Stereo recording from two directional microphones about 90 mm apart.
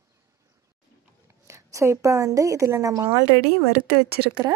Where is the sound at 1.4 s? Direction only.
35° right (ahead or behind).